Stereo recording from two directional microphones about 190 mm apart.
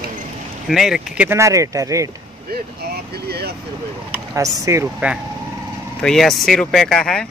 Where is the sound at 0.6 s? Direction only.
Centre (ahead or behind).